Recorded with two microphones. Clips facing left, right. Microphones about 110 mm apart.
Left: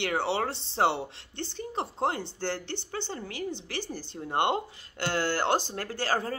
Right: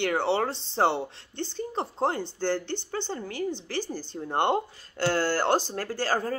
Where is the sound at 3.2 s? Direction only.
45° right (ahead or behind).